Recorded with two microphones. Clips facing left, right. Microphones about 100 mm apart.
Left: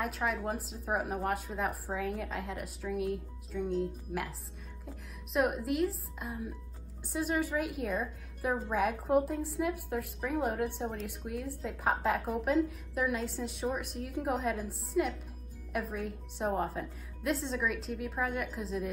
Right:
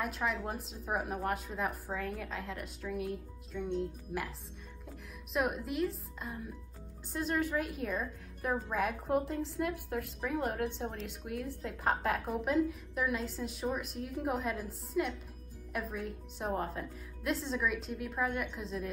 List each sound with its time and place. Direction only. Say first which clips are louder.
0.0 s a woman's voice: left 2 dB; centre (ahead or behind)